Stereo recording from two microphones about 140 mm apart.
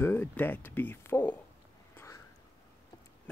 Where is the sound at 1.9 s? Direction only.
20° left (ahead or behind).